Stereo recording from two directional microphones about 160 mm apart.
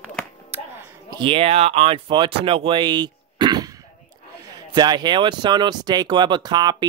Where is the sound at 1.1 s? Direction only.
30° right (ahead or behind).